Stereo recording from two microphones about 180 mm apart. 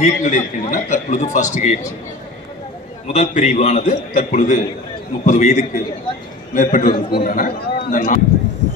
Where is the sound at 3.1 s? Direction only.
40° left (ahead or behind).